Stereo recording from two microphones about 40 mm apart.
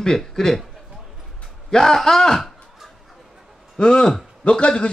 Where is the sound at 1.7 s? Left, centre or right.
Centre.